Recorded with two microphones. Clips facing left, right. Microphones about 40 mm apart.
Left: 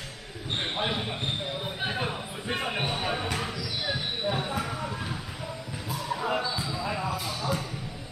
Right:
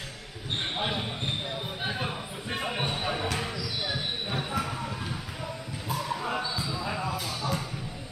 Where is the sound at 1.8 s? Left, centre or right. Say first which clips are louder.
Left 2 dB; centre.